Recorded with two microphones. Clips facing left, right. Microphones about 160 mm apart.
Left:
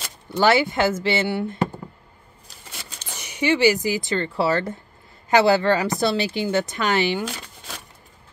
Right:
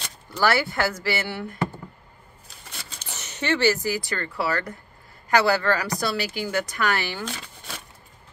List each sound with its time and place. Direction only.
0.3 s speech: 20° left (ahead or behind)
3.1 s speech: 10° left (ahead or behind)
7.2 s a sound: 5° left (ahead or behind)